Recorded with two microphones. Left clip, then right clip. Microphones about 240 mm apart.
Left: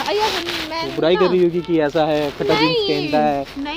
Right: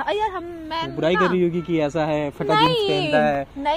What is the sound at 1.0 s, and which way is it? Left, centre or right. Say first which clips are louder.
Speech: left 4 dB; right.